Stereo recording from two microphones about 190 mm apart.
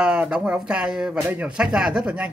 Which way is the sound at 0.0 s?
5° right (ahead or behind).